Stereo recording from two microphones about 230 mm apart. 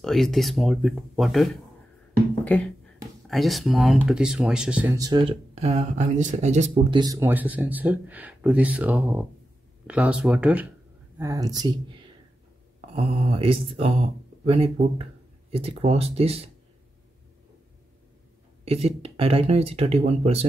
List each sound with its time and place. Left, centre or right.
0.0 s speech: centre
2.4 s beatboxing: centre
3.3 s speech: centre; by 7.0 s right
7.0 s speech: centre
18.7 s speech: right